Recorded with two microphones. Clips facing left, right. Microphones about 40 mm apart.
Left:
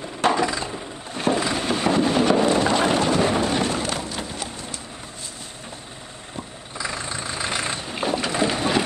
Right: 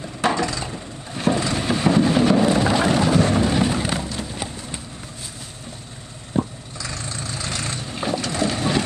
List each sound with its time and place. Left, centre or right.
0.0 s a sound: centre
4.0 s horse: centre
6.4 s vehicle: right
6.8 s vehicle: left